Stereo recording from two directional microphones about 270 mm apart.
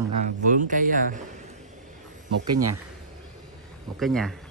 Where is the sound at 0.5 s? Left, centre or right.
Right.